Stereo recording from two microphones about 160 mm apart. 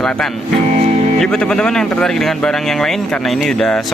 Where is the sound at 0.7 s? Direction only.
50° right (ahead or behind).